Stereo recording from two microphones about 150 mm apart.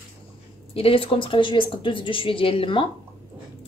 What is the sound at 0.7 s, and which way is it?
A woman's voice, 40° left (ahead or behind).